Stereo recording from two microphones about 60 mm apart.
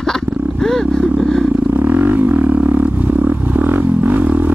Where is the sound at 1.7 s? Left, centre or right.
Right.